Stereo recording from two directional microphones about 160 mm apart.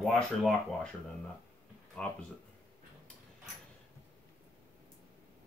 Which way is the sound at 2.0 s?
5° left (ahead or behind).